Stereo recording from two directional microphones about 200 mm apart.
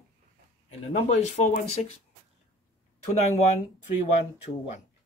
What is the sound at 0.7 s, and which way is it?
Speech, 35° left (ahead or behind).